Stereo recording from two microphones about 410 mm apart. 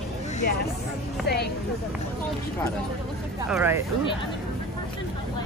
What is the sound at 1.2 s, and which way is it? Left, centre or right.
Speech, left.